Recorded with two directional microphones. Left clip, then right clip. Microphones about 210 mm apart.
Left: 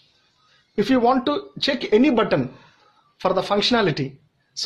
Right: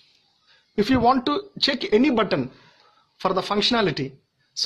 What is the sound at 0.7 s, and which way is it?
Speech, 30° right (ahead or behind).